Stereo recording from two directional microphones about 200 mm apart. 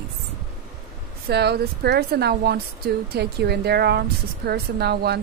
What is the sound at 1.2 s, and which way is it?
Speech, 55° right (ahead or behind).